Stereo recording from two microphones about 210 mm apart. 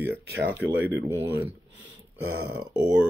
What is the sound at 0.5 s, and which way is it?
Speech, 55° right (ahead or behind).